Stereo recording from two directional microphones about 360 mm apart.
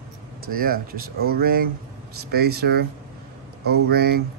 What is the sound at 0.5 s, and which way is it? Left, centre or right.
Speech, right.